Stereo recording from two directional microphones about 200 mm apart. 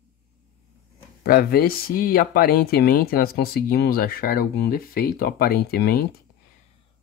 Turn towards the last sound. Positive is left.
turn(degrees=50)  # may be behind; listen again after turning